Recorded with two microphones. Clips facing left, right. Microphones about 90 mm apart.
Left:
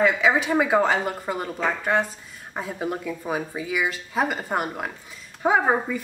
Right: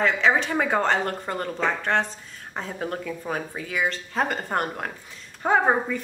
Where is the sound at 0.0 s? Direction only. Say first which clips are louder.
Left 1 dB; 5° left (ahead or behind).